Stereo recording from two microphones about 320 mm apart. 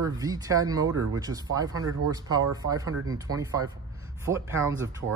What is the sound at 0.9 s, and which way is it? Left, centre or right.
Speech, right.